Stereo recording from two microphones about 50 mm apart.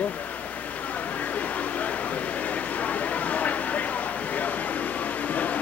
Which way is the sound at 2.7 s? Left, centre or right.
Left.